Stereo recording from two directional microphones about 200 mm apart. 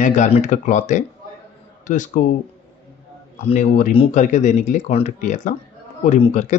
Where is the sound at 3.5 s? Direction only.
40° left (ahead or behind).